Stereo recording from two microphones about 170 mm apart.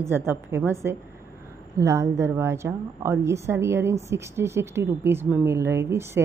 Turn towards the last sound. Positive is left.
turn(degrees=-15)  # may be behind; listen again after turning